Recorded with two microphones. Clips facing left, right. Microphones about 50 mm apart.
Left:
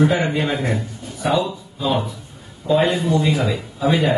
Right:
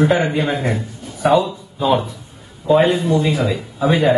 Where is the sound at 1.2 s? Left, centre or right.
Right.